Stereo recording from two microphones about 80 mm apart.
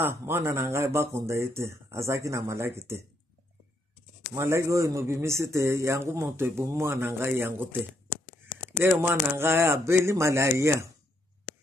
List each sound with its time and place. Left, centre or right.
0.0 s a man's voice: right
4.4 s a man's voice: right
8.6 s a man's voice: right